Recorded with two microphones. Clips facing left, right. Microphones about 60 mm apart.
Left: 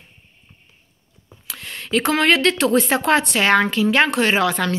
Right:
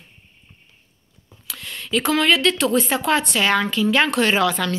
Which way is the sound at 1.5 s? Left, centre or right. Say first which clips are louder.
Left 2 dB; left.